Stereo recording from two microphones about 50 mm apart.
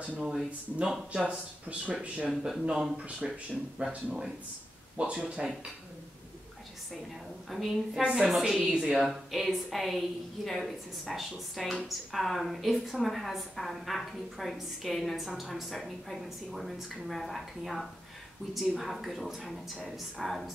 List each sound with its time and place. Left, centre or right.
0.2 s speech: centre
1.1 s speech: right
2.7 s speech: centre
3.8 s speech: right
7.4 s a woman's voice: centre
8.6 s speech: centre
9.0 s a woman's voice: centre